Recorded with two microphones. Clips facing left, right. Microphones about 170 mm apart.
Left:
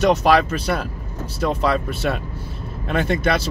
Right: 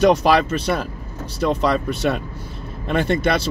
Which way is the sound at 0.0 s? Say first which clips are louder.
Right 1 dB; centre (ahead or behind).